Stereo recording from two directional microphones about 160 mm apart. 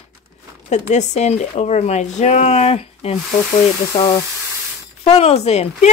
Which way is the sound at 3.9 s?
25° left (ahead or behind).